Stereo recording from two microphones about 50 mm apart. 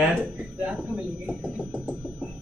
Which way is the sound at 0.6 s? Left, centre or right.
Right.